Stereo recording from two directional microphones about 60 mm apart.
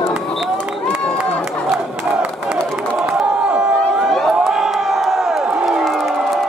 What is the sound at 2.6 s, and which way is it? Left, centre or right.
Run, centre.